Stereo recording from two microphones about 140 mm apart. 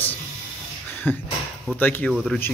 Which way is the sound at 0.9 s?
15° left (ahead or behind).